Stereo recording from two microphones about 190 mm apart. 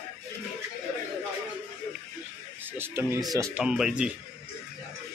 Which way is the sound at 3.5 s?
5° right (ahead or behind).